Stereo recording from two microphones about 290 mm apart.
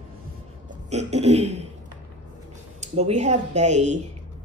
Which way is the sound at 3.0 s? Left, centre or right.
Right.